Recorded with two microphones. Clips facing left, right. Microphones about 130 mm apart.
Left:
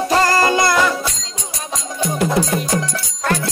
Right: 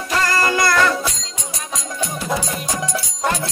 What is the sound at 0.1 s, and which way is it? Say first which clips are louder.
Music: left 3 dB; 35° left (ahead or behind).